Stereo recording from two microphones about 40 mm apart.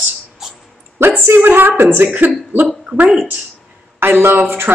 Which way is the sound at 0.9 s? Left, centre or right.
Right.